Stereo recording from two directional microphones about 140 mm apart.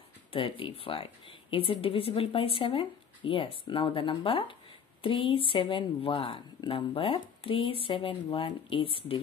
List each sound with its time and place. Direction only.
0.3 s speech: 40° left (ahead or behind)